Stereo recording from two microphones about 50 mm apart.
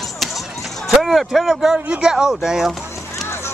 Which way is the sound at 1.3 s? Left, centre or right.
Centre.